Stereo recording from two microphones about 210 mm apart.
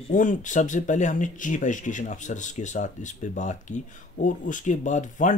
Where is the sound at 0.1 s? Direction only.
40° left (ahead or behind).